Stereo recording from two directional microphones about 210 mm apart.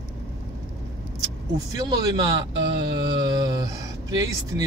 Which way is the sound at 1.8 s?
20° right (ahead or behind).